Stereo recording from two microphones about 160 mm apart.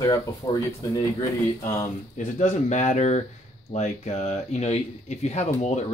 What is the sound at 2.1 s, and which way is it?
Speech, 50° left (ahead or behind).